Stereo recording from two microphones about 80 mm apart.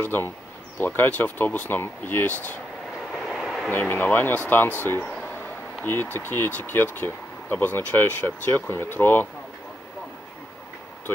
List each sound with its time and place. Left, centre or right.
0.0 s speech: left
3.1 s vehicle: centre
3.7 s speech: left